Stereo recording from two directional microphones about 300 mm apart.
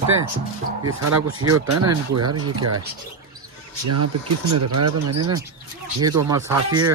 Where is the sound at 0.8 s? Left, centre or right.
Right.